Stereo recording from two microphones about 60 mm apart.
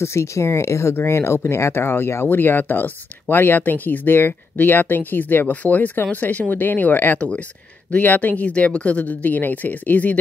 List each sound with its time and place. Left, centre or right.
0.0 s speech: left
7.2 s speech: centre